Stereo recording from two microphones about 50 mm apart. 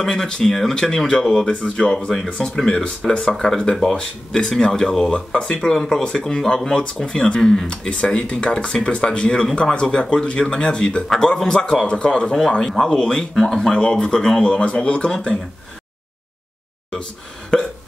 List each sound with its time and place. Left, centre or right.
0.0 s a man's voice: centre; by 15.0 s left
17.5 s hiccup: centre